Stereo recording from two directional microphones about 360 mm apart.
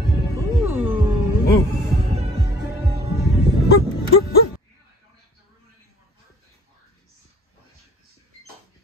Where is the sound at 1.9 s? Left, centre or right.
Centre.